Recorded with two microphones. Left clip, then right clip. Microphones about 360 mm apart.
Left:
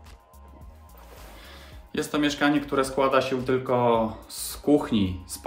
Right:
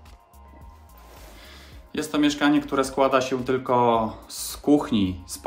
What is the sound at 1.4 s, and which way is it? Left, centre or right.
Speech, centre.